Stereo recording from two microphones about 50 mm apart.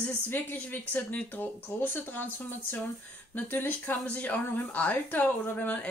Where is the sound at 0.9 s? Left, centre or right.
Left.